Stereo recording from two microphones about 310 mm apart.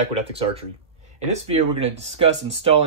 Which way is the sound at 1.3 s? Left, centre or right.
Right.